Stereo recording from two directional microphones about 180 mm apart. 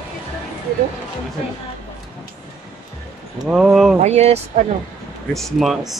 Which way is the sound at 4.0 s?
35° right (ahead or behind).